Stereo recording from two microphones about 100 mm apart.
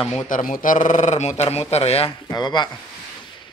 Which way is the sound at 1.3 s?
90° left.